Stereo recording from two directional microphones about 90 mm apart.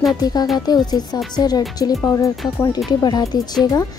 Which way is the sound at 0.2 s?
45° left (ahead or behind).